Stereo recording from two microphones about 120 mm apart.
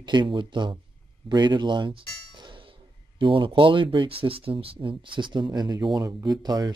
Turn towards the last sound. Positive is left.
turn(degrees=-35)  # may be behind; listen again after turning